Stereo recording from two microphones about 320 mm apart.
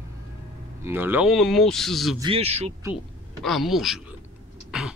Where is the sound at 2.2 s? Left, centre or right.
Centre.